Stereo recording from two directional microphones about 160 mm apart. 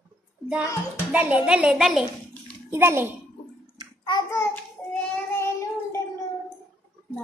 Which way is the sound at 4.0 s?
30° left (ahead or behind).